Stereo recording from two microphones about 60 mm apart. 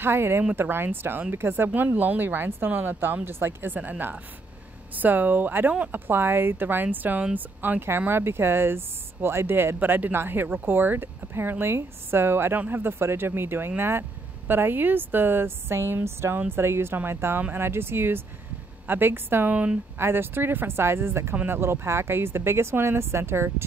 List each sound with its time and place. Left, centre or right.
0.0 s speech: right
4.9 s speech: right
19.5 s a woman's voice: right
20.0 s speech: right